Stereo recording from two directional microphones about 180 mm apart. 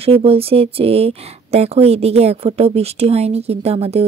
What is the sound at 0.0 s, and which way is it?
Speech, 30° right (ahead or behind).